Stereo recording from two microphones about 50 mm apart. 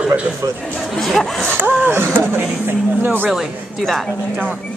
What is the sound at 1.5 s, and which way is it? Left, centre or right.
Speech, right.